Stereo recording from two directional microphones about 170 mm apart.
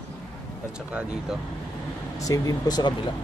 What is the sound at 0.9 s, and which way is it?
Speech, 5° right (ahead or behind).